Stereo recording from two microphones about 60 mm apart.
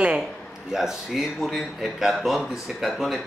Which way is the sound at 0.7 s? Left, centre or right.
Centre.